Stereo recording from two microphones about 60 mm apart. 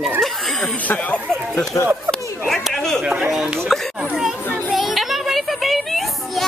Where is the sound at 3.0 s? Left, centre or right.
Centre.